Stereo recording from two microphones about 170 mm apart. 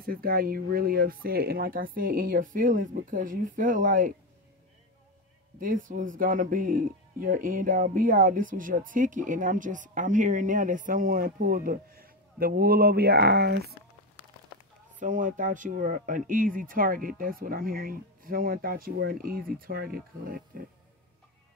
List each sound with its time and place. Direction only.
0.0 s speech: 60° right (ahead or behind)
5.6 s speech: 50° right (ahead or behind); by 13.7 s 70° right (ahead or behind)
15.0 s speech: 50° right (ahead or behind)